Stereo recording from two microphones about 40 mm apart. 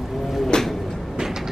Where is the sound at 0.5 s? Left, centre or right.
Centre.